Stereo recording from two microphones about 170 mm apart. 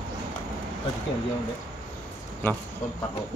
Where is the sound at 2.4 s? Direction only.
10° left (ahead or behind).